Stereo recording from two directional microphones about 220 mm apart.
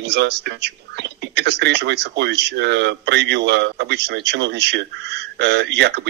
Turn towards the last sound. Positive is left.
turn(degrees=-50)  # may be behind; listen again after turning